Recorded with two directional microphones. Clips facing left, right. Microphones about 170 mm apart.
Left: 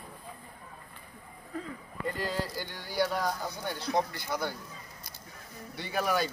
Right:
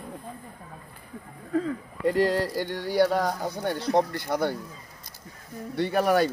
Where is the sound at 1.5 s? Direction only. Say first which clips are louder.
Right 11 dB; 90° right; by 4.5 s 60° right (ahead or behind).